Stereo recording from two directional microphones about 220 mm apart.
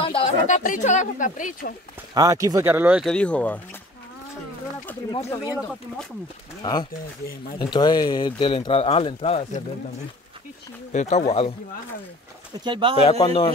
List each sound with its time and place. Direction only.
0.0 s a sound: 25° left (ahead or behind)
0.7 s speech: 35° left (ahead or behind)
2.1 s speech: 15° right (ahead or behind); by 3.6 s 5° left (ahead or behind)
5.3 s speech: 15° left (ahead or behind)
6.6 s speech: 20° left (ahead or behind)
10.9 s speech: 30° left (ahead or behind)
12.6 s speech: 20° right (ahead or behind)
13.0 s speech: 20° left (ahead or behind)